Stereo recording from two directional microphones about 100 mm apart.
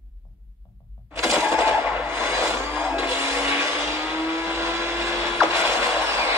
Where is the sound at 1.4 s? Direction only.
25° right (ahead or behind).